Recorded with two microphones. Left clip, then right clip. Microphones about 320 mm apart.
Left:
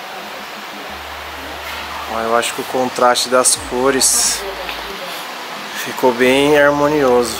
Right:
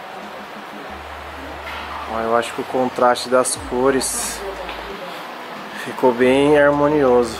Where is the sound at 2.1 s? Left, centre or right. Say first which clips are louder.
Left 3 dB; centre.